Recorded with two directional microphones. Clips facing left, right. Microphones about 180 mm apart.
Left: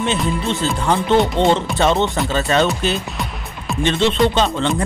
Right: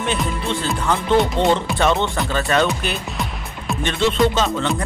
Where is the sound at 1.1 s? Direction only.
Centre (ahead or behind).